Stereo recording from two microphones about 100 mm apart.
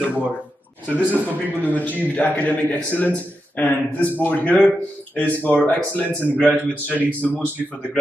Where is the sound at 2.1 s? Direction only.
15° left (ahead or behind).